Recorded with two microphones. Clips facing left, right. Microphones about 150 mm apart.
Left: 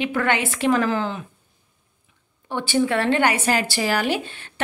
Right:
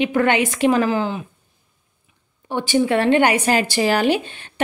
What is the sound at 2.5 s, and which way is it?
Speech, 15° right (ahead or behind).